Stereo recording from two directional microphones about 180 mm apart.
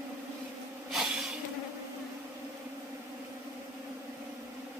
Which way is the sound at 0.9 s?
5° right (ahead or behind).